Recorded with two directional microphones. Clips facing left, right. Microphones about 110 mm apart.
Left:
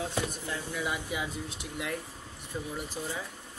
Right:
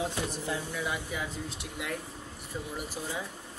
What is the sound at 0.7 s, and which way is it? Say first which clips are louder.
Speech: left 1 dB; 10° left (ahead or behind).